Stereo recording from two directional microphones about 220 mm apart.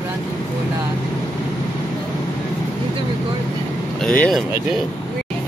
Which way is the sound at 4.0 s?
5° left (ahead or behind).